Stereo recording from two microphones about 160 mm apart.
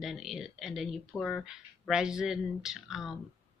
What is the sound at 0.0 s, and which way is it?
Speech, centre (ahead or behind).